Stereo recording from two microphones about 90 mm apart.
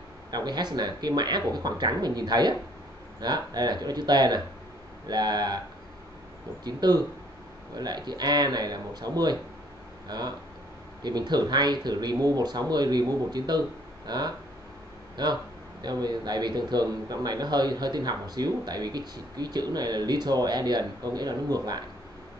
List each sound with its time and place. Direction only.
0.3 s a man's voice: 50° right (ahead or behind)
6.6 s a man's voice: 50° right (ahead or behind)